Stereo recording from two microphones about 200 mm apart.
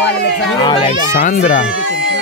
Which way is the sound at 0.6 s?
25° left (ahead or behind).